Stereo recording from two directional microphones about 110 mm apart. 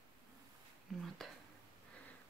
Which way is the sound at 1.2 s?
Centre (ahead or behind).